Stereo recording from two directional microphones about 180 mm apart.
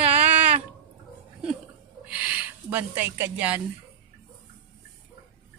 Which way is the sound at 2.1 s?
10° right (ahead or behind).